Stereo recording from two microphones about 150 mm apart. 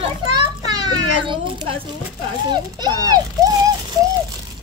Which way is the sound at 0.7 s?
30° right (ahead or behind).